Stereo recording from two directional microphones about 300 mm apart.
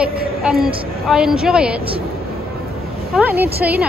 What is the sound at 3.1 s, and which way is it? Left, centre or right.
Speech, centre.